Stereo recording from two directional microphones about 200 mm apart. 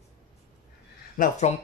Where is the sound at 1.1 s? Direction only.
40° left (ahead or behind).